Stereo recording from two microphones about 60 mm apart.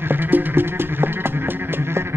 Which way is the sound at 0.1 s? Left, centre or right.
Right.